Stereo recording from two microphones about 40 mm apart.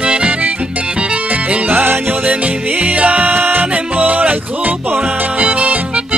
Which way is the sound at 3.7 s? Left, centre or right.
Right.